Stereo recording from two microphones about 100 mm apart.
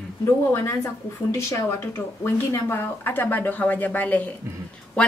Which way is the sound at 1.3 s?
30° left (ahead or behind).